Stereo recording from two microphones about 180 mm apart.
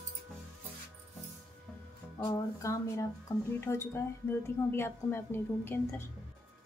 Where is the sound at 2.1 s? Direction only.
20° left (ahead or behind).